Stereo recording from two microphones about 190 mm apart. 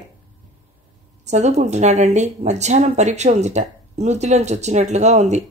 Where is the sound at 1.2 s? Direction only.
35° right (ahead or behind).